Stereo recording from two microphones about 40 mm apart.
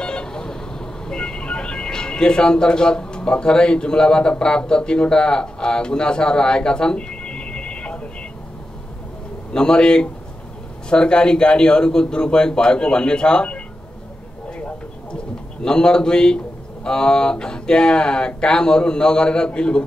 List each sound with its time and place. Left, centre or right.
0.0 s vehicle: left
9.5 s speech: left
15.6 s speech: left